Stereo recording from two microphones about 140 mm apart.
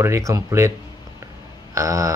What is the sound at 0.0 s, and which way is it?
Speech, 20° right (ahead or behind).